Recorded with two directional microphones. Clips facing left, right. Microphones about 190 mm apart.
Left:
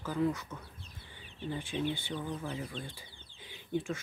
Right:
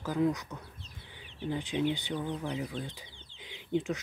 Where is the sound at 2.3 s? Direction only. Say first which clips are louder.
Right 3 dB; 20° right (ahead or behind).